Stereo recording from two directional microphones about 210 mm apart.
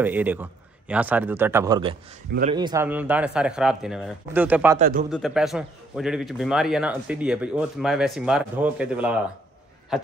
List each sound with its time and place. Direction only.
0.0 s speech: 10° right (ahead or behind)
4.7 s a man's voice: 40° right (ahead or behind)
5.1 s a man's voice: centre (ahead or behind)